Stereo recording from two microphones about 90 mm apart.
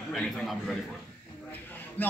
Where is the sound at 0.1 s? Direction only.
Centre (ahead or behind).